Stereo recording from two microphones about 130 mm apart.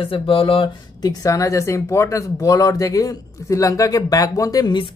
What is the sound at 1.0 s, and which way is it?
A woman's voice, 30° left (ahead or behind).